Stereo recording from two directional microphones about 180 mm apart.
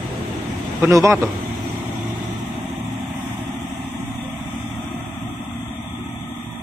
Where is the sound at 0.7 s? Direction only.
15° right (ahead or behind).